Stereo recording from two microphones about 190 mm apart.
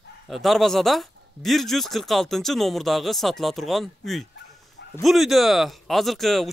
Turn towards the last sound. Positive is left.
turn(degrees=0)  # may be behind; listen again after turning